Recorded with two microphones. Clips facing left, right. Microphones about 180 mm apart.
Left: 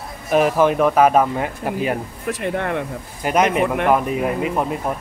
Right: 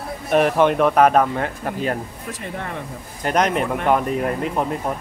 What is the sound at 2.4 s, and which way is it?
Speech, 70° left (ahead or behind).